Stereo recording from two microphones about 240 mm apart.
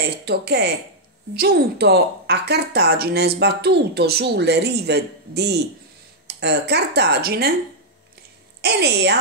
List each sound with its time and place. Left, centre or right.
0.0 s speech: right
8.5 s speech: right